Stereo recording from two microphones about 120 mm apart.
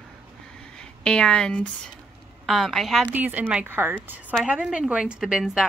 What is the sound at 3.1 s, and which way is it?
A woman's voice, 15° right (ahead or behind).